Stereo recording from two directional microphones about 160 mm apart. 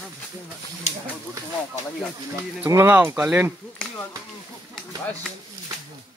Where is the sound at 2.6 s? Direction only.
10° right (ahead or behind).